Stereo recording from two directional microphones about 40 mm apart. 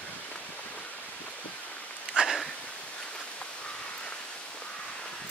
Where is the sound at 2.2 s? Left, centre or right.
Right.